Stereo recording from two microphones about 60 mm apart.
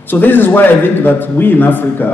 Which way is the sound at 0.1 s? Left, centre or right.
Left.